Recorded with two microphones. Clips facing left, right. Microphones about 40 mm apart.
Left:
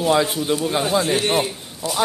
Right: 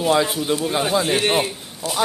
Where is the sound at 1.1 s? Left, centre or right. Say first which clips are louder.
Even; centre.